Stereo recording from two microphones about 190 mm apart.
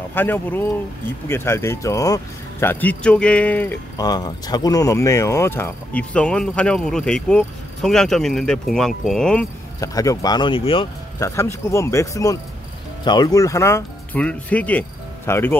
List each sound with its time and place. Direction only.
0.1 s speech: 10° left (ahead or behind)
4.0 s speech: 20° left (ahead or behind); by 9.5 s 5° left (ahead or behind)
9.8 s speech: 20° left (ahead or behind)
11.1 s speech: 15° left (ahead or behind)